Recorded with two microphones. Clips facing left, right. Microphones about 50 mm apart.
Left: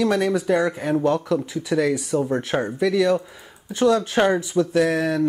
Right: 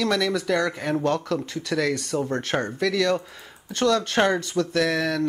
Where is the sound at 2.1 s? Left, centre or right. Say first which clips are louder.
Left 3 dB; centre.